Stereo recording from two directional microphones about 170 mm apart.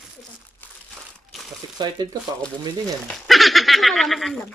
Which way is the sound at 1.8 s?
25° right (ahead or behind).